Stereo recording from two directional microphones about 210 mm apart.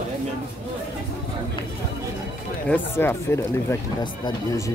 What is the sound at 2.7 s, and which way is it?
Speech, 10° left (ahead or behind).